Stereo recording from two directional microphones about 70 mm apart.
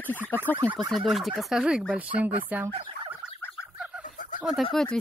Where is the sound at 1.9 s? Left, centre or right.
Right.